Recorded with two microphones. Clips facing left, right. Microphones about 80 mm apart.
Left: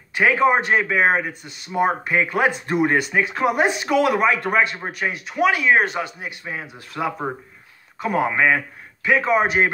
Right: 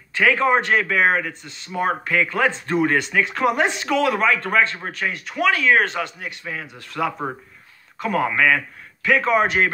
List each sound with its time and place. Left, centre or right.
0.4 s speech: centre
5.1 s speech: centre
6.1 s speech: left
6.7 s speech: centre
8.3 s speech: left
9.0 s speech: centre